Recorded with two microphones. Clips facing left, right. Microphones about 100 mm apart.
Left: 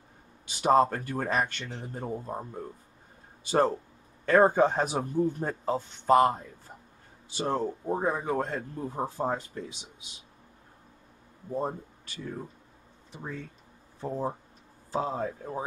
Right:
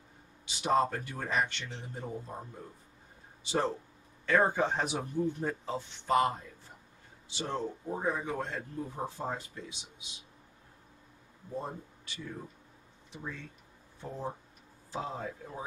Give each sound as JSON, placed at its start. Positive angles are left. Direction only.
{"t": 0.6, "sound": "speech", "side_deg": 45}
{"t": 3.4, "sound": "speech", "side_deg": 50}
{"t": 13.1, "sound": "speech", "side_deg": 45}